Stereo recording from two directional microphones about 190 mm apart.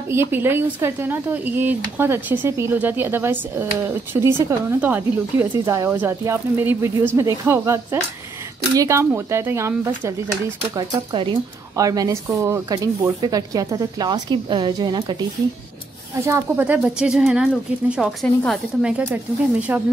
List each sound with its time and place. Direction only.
0.1 s speech: 10° right (ahead or behind)
16.3 s speech: 10° right (ahead or behind)